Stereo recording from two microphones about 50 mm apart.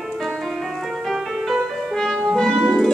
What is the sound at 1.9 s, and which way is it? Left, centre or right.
Music, centre.